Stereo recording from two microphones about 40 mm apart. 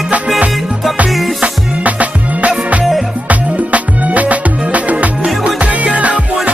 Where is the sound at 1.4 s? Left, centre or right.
Right.